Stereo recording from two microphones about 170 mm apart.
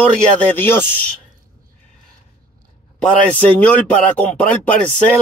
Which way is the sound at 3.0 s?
10° left (ahead or behind).